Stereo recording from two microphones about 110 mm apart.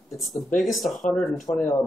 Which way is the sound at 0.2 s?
Centre (ahead or behind).